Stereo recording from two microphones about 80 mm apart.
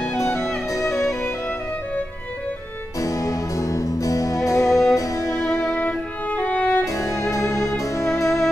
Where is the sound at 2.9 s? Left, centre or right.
Left.